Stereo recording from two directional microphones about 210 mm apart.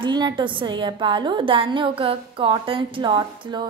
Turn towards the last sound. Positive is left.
turn(degrees=-20)  # may be behind; listen again after turning